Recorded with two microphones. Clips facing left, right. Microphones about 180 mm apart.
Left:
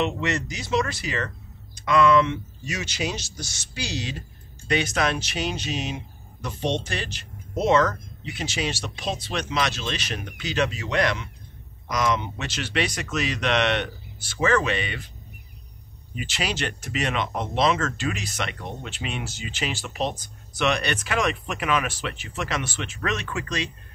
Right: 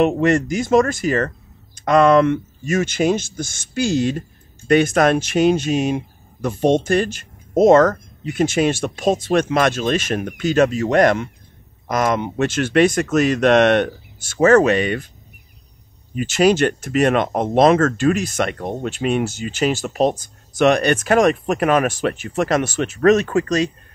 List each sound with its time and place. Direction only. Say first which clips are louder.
0.0 s speech: right 10 dB; 50° right (ahead or behind)
16.2 s speech: right 14 dB; 45° right (ahead or behind)